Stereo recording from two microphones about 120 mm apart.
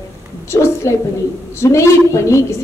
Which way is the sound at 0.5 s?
25° left (ahead or behind).